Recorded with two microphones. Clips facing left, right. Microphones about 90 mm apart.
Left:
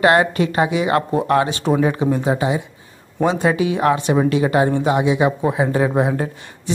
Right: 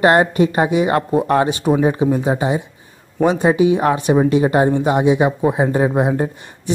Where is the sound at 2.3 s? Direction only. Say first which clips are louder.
Right 1 dB; 30° right (ahead or behind).